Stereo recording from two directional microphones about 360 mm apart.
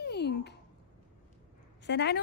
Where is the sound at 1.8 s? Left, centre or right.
Left.